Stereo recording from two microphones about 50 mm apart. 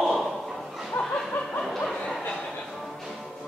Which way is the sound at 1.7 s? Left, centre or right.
Centre.